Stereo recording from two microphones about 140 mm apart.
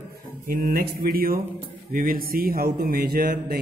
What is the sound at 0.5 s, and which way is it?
Speech, 85° right.